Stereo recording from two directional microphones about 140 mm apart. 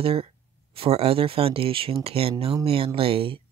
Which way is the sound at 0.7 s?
45° right (ahead or behind).